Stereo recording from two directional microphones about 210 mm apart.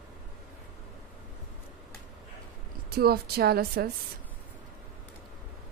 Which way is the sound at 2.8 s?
45° right (ahead or behind).